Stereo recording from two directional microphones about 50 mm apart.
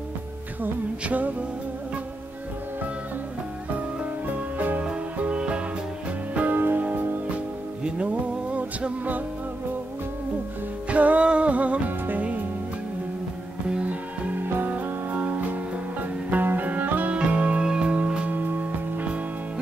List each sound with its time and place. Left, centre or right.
1.0 s music: right
4.3 s music: right
6.3 s music: right
7.8 s music: right
10.9 s music: right
13.7 s music: right
17.1 s music: right
18.3 s music: right